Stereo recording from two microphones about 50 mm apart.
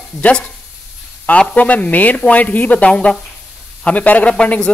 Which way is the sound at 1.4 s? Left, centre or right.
Left.